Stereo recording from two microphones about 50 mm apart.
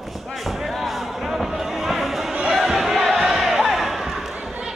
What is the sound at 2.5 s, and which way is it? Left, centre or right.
Crowd, centre.